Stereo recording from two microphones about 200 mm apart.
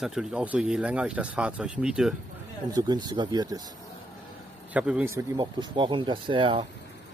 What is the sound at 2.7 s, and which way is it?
Speech, 20° right (ahead or behind).